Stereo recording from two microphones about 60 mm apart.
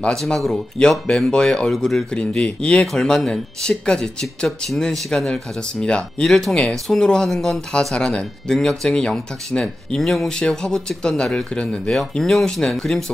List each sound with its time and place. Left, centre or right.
0.0 s speech: centre
2.1 s speech: centre
2.9 s speech: centre
7.9 s speech: centre
12.1 s speech: centre